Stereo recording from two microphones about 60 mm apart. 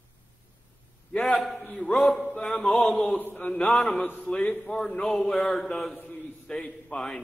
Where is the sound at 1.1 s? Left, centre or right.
Centre.